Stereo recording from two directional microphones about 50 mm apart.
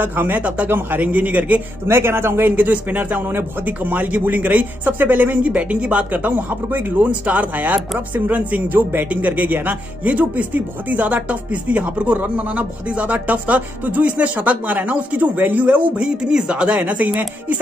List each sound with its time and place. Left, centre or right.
0.0 s speech: right
0.4 s speech: right
0.7 s speech: right
1.9 s speech: right
2.5 s speech: right
15.6 s speech: right